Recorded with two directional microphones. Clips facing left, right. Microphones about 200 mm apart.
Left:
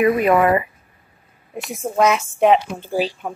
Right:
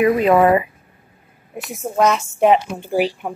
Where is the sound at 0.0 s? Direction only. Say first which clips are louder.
Right 2 dB; 20° right (ahead or behind).